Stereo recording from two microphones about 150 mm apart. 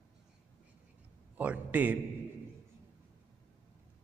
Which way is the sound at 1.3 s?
10° right (ahead or behind).